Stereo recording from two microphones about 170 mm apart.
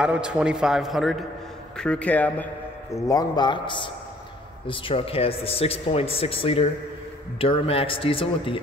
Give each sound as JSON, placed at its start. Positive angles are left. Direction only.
{"t": 0.0, "sound": "a man's voice", "side_deg": -5}